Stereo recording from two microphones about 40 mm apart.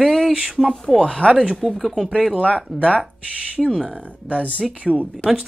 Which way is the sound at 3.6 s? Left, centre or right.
Centre.